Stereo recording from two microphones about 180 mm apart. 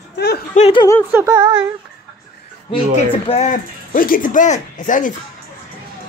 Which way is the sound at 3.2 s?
40° left (ahead or behind).